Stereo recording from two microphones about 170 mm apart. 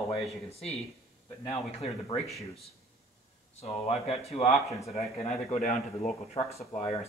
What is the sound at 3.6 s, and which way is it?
Speech, 35° left (ahead or behind).